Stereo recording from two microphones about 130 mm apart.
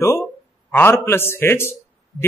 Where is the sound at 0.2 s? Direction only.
15° left (ahead or behind).